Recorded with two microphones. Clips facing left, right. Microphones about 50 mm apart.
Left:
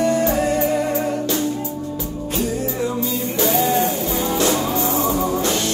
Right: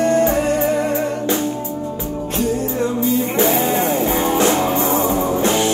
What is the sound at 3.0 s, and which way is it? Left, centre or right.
Music, right.